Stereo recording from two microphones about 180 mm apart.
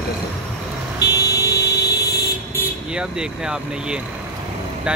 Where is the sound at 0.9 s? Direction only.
20° left (ahead or behind).